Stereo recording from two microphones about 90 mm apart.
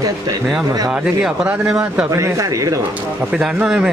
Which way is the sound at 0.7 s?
40° right (ahead or behind).